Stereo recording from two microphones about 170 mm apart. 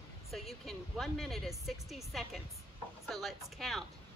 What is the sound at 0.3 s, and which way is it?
Speech, centre (ahead or behind).